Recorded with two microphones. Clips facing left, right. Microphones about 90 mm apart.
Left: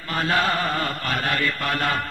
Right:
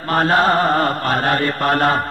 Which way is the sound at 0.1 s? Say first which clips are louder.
Right 7 dB; 45° right (ahead or behind).